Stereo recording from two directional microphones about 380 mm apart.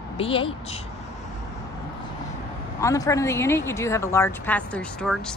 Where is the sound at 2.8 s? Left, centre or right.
Centre.